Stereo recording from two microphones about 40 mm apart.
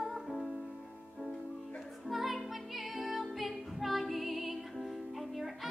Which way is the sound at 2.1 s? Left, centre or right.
Centre.